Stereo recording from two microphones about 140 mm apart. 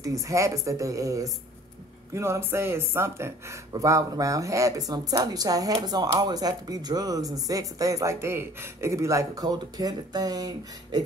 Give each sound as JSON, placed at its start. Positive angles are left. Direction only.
{"t": 0.0, "sound": "speech", "side_deg": -25}